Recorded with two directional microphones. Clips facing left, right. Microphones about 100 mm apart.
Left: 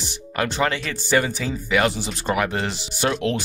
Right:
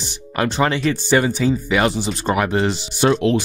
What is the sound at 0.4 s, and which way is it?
Speech, 25° right (ahead or behind).